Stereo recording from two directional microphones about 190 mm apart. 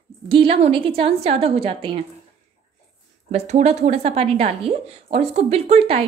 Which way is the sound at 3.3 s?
35° right (ahead or behind).